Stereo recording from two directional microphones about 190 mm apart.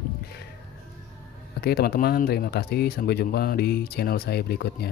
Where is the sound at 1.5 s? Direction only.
55° left (ahead or behind).